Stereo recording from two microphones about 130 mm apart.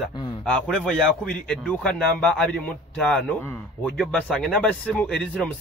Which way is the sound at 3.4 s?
20° left (ahead or behind).